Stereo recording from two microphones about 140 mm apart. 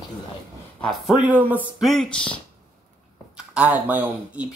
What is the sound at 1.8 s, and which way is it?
Speech, centre (ahead or behind).